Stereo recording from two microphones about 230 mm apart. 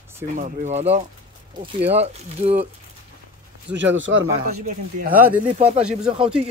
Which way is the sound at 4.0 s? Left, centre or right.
Right.